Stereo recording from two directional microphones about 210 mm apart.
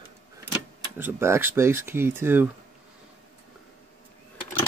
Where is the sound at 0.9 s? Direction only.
10° right (ahead or behind).